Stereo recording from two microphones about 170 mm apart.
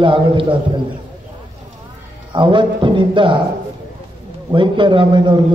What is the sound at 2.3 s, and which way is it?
A man's voice, 30° right (ahead or behind).